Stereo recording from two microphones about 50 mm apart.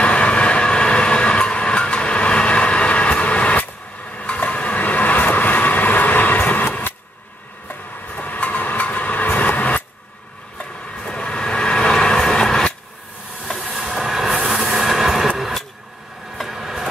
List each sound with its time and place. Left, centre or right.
0.0 s train: left
4.2 s vehicle: left
8.2 s vehicle: left
10.6 s vehicle: left
13.7 s train: centre
15.3 s vehicle: centre